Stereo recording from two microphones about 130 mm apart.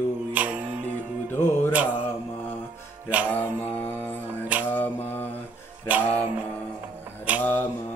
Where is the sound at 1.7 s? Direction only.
10° right (ahead or behind).